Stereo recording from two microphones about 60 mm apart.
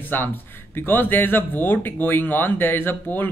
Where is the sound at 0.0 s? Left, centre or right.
Left.